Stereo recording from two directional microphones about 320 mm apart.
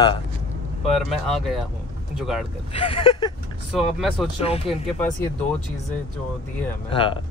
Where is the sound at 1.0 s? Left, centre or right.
Centre.